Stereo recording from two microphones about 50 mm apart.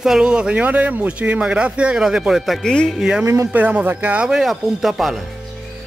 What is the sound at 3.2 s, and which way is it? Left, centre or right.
Speech, right.